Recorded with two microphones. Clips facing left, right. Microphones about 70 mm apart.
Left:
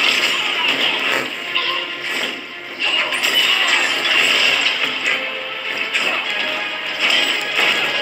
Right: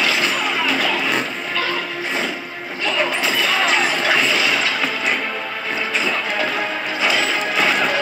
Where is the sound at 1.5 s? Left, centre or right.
Right.